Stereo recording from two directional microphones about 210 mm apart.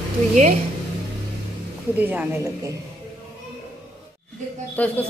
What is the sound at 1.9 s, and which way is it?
Speech, 10° right (ahead or behind).